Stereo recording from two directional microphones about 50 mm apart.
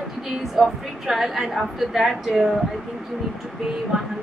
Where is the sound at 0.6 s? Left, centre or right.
Centre.